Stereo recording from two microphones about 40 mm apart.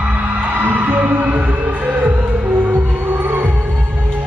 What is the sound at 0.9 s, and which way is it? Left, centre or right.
Music, right.